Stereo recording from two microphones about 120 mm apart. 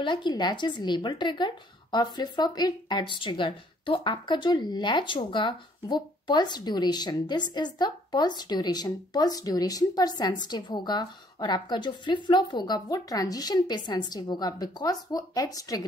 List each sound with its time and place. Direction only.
0.0 s speech: 40° left (ahead or behind)